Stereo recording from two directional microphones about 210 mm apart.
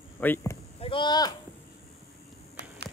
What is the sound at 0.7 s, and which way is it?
Speech, 25° left (ahead or behind).